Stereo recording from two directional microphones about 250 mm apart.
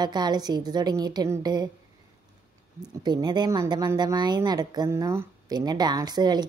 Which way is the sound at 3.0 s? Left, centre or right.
Centre.